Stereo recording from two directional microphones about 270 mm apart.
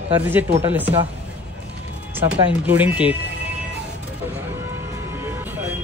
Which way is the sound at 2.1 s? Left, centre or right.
Centre.